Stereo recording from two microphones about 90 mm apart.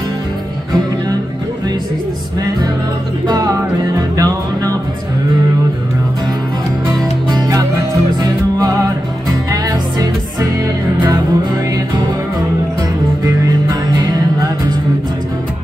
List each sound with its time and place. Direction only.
3.3 s music: 50° right (ahead or behind)
8.2 s music: 45° right (ahead or behind)
13.2 s music: 50° right (ahead or behind)